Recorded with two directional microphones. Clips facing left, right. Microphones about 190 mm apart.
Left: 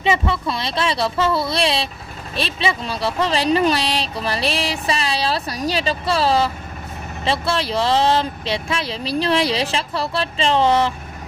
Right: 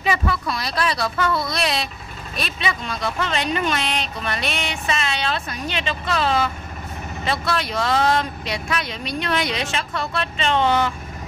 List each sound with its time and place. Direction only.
0.0 s speech: 25° left (ahead or behind)